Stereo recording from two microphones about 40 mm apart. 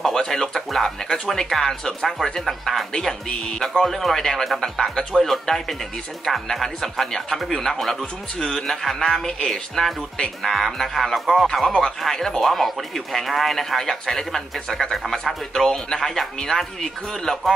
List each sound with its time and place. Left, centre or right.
0.0 s speech: centre
2.9 s speech: centre
3.8 s speech: centre
11.6 s speech: centre